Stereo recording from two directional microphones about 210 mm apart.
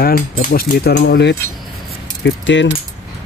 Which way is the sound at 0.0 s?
45° left (ahead or behind).